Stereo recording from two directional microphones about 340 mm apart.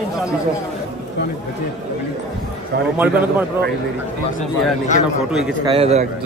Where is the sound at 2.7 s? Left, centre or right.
Right.